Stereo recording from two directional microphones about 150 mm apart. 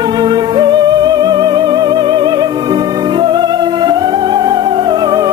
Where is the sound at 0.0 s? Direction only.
30° right (ahead or behind).